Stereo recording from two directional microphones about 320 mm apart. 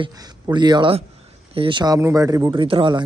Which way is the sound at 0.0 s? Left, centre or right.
Centre.